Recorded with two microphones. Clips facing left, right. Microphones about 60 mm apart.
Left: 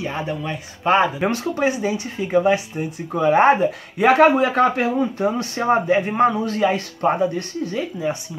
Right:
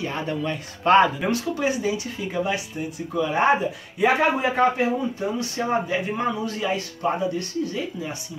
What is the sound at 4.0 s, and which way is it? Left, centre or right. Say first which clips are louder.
Speech: left 6 dB; left.